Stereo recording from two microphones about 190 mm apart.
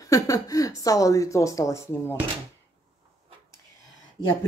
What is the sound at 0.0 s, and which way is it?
Speech, 20° left (ahead or behind).